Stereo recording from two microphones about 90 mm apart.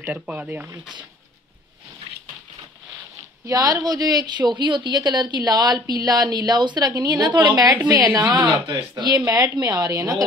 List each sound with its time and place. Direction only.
0.1 s speech: 15° right (ahead or behind)
3.4 s a woman's voice: 40° right (ahead or behind)
9.2 s a woman's voice: 45° right (ahead or behind)